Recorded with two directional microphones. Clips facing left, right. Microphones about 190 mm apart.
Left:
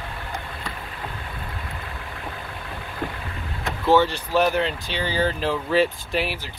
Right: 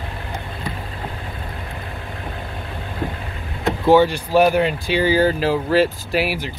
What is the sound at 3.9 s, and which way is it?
Speech, 10° right (ahead or behind).